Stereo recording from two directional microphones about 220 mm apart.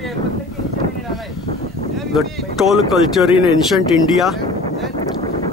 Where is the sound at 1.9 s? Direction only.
Centre (ahead or behind).